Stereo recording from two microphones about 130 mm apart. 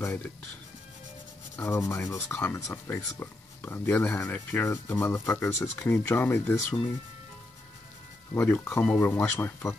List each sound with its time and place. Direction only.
0.0 s speech: 15° left (ahead or behind)
1.6 s speech: 20° left (ahead or behind)
8.4 s speech: 15° left (ahead or behind)